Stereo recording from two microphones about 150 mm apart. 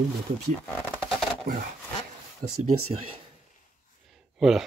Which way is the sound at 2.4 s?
65° right (ahead or behind).